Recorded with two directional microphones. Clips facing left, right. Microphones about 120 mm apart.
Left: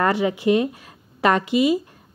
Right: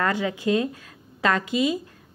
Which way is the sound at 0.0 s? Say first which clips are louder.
Left 5 dB; 25° left (ahead or behind).